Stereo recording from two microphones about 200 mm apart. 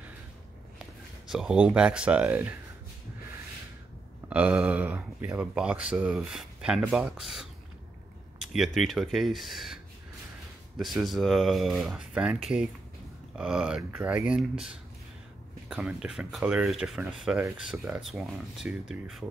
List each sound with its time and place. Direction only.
0.7 s speech: centre (ahead or behind)
4.3 s speech: 5° right (ahead or behind)
10.8 s speech: centre (ahead or behind)
15.7 s speech: 5° right (ahead or behind)